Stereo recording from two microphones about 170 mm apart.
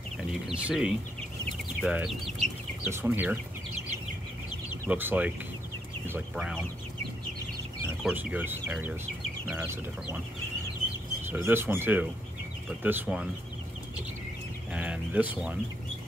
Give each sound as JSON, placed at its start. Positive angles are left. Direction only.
{"t": 0.2, "sound": "speech", "side_deg": -5}
{"t": 1.8, "sound": "chicken", "side_deg": -5}
{"t": 2.9, "sound": "speech", "side_deg": -10}
{"t": 4.8, "sound": "speech", "side_deg": -10}
{"t": 6.3, "sound": "speech", "side_deg": 0}
{"t": 8.0, "sound": "speech", "side_deg": -5}
{"t": 11.3, "sound": "speech", "side_deg": -10}
{"t": 14.7, "sound": "a sound", "side_deg": -5}